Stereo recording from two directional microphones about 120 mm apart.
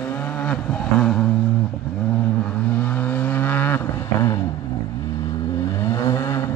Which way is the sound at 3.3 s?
15° left (ahead or behind).